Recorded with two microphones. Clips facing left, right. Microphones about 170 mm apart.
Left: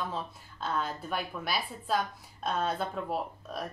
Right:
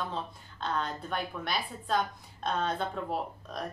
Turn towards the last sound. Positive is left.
turn(degrees=5)  # may be behind; listen again after turning